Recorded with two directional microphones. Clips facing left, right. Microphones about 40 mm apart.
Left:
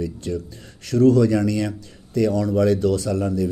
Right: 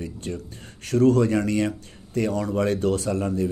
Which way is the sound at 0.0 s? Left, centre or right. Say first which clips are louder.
Left 5 dB; right.